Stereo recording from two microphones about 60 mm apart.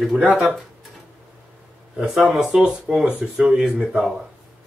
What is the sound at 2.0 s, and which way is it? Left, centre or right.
Speech, centre.